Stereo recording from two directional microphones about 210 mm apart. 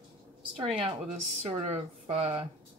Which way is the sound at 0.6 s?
25° right (ahead or behind).